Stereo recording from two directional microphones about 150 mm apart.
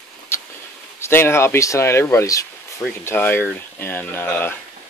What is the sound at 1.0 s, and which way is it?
Speech, 15° left (ahead or behind).